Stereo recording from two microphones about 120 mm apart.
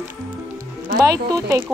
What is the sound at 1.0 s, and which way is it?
Speech, 30° right (ahead or behind).